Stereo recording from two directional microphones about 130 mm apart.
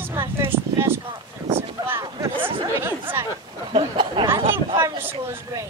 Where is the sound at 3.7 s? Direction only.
40° right (ahead or behind).